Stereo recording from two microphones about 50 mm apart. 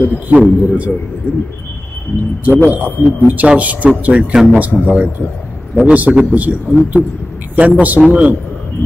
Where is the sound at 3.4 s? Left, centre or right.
Right.